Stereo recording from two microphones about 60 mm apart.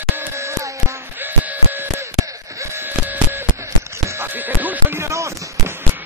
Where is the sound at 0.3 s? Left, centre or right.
Right.